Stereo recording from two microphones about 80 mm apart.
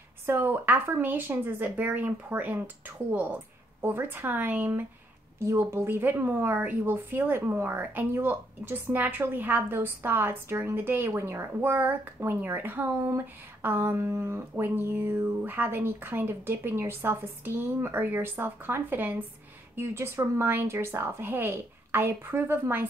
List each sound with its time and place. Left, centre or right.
0.3 s a woman's voice: right
5.4 s a woman's voice: right